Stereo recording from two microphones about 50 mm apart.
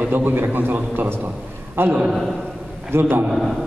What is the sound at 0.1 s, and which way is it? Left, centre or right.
A man's voice, right.